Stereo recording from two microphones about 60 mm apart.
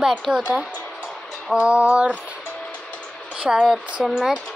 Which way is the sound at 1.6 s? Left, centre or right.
Centre.